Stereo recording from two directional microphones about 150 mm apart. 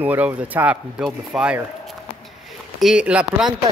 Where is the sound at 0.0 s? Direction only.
10° right (ahead or behind).